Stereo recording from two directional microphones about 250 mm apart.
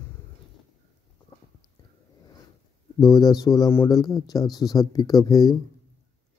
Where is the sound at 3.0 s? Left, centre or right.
Centre.